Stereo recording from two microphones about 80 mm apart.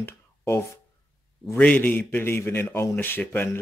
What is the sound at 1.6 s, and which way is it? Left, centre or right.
A man's voice, centre.